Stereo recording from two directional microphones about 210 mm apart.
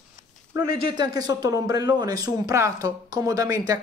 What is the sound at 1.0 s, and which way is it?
A woman's voice, 15° right (ahead or behind).